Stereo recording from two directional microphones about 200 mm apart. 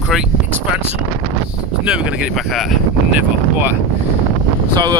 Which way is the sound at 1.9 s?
5° right (ahead or behind).